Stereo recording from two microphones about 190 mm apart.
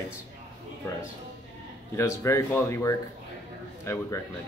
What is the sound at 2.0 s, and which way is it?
Speech, 15° left (ahead or behind).